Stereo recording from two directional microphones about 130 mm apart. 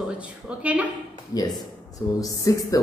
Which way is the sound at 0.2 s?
10° right (ahead or behind).